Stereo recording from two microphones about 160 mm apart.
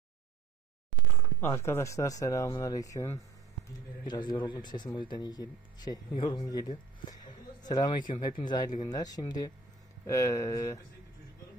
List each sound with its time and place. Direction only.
1.4 s speech: 15° left (ahead or behind)
7.6 s speech: 25° left (ahead or behind)